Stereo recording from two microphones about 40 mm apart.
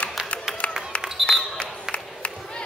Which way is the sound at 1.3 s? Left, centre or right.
Left.